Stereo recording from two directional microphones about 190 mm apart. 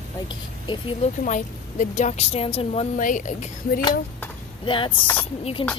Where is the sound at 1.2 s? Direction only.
40° left (ahead or behind).